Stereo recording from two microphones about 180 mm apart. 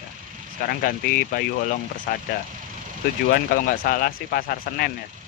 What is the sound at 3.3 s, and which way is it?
Speech, 55° left (ahead or behind).